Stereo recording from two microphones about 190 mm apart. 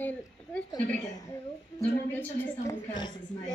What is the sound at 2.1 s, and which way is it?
A woman's voice, 15° left (ahead or behind).